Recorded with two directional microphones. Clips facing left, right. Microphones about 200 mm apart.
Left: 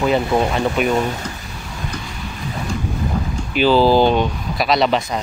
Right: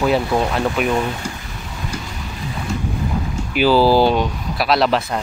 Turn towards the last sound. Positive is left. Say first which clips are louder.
# even
turn(degrees=0)  # may be behind; listen again after turning